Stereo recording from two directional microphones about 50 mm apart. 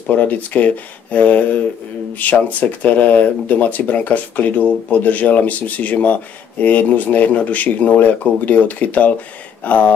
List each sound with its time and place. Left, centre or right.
0.1 s speech: left